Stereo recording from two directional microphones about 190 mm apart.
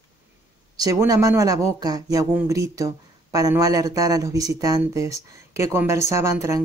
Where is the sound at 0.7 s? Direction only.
20° right (ahead or behind).